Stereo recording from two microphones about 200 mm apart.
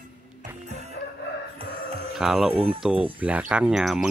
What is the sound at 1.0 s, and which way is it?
Music, 60° left (ahead or behind).